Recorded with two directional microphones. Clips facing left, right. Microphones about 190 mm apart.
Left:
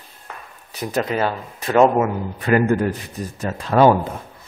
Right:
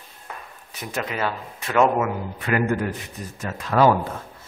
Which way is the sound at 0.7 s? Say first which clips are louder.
Left 7 dB; 35° left (ahead or behind).